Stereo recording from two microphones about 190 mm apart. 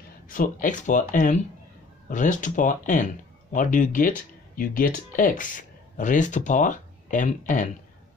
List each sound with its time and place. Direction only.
0.3 s speech: 45° left (ahead or behind)